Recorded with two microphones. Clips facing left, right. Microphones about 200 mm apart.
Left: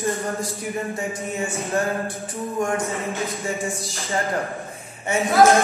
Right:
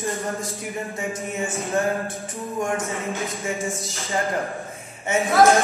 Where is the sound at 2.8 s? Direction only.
Centre (ahead or behind).